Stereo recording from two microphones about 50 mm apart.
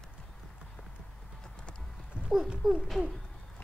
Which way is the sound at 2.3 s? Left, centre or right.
Centre.